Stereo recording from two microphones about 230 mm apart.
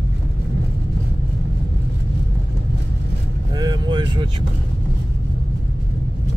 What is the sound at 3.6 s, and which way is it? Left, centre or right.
Vehicle, centre.